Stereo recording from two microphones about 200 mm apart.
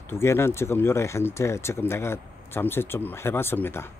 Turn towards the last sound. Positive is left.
turn(degrees=10)  # may be behind; listen again after turning